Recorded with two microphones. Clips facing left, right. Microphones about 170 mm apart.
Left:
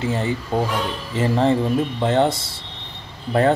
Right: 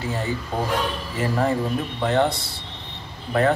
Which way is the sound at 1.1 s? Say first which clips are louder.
Left 5 dB; 25° left (ahead or behind).